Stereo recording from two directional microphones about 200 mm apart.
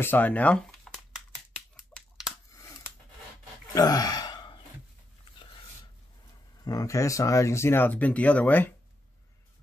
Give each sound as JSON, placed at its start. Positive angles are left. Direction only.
{"t": 0.0, "sound": "speech", "side_deg": 10}
{"t": 1.8, "sound": "a sound", "side_deg": 0}
{"t": 2.5, "sound": "scissors", "side_deg": 15}
{"t": 3.7, "sound": "gasp", "side_deg": 20}
{"t": 6.6, "sound": "speech", "side_deg": 15}